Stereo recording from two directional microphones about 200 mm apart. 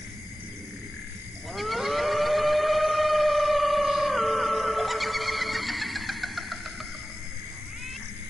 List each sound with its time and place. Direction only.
1.5 s livestock: centre (ahead or behind)